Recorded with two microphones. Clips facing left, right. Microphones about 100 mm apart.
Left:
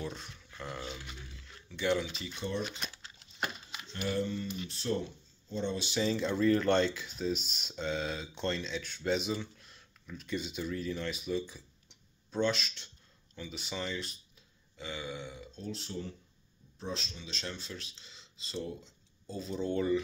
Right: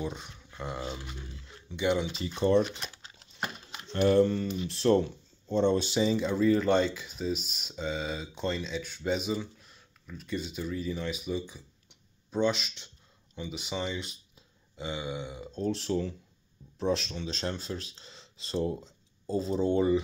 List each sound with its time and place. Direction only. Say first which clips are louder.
0.0 s a sound: right 4 dB; 15° right (ahead or behind)
1.7 s burping: right 3 dB; 15° right (ahead or behind)
3.9 s speech: right 11 dB; 55° right (ahead or behind)
4.6 s speech: right 12 dB; 75° right (ahead or behind); by 5.9 s 55° right (ahead or behind)
5.9 s speech: right 4 dB; 10° right (ahead or behind)
14.8 s burping: right 5 dB; 20° right (ahead or behind)
15.5 s speech: right 12 dB; 60° right (ahead or behind)
17.3 s speech: right 7 dB; 40° right (ahead or behind)
18.6 s speech: right 8 dB; 35° right (ahead or behind)